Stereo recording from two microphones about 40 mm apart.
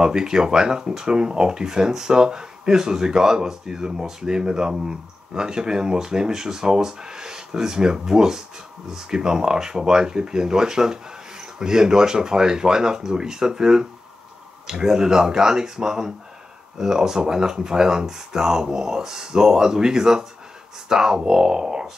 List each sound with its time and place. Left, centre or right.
0.0 s speech: centre